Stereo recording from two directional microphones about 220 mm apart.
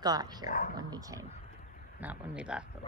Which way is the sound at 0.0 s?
20° right (ahead or behind).